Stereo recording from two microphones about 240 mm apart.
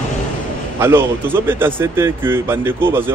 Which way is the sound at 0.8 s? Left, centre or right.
Centre.